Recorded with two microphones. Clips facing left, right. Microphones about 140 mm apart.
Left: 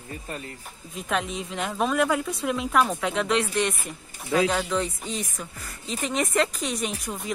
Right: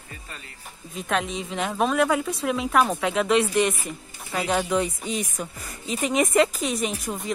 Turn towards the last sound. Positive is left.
turn(degrees=0)  # may be behind; listen again after turning